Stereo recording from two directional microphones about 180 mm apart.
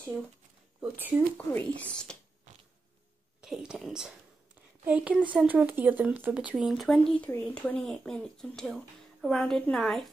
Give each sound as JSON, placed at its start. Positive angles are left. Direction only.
{"t": 0.7, "sound": "speech", "side_deg": -10}
{"t": 1.5, "sound": "speech", "side_deg": 5}
{"t": 3.3, "sound": "speech", "side_deg": -5}